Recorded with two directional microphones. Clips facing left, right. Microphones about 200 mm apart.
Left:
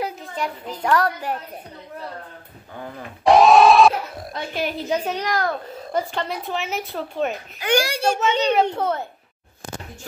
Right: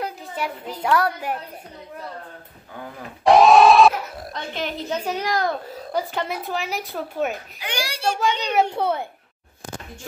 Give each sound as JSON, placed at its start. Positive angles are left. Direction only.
{"t": 0.4, "sound": "a woman's voice", "side_deg": -5}
{"t": 3.3, "sound": "speech", "side_deg": 0}
{"t": 5.1, "sound": "a woman's voice", "side_deg": -10}
{"t": 5.5, "sound": "a woman's voice", "side_deg": 0}
{"t": 7.5, "sound": "a child's voice", "side_deg": 50}
{"t": 8.7, "sound": "a woman's voice", "side_deg": -10}